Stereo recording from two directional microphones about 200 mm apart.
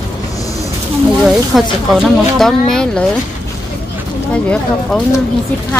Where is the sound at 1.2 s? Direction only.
Centre (ahead or behind).